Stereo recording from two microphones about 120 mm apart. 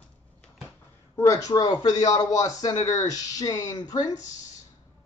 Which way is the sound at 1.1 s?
30° left (ahead or behind).